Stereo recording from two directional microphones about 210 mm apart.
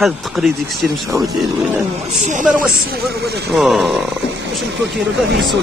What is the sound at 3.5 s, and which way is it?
Speech, centre (ahead or behind).